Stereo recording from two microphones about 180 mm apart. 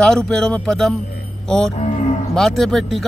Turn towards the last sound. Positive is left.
turn(degrees=0)  # may be behind; listen again after turning